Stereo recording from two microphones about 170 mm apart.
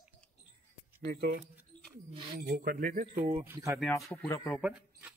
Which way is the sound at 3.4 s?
15° right (ahead or behind).